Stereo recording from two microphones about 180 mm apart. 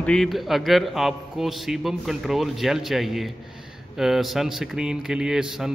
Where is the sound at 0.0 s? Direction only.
Centre (ahead or behind).